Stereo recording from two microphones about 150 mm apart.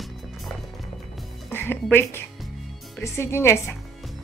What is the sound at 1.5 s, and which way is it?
Speech, 15° left (ahead or behind).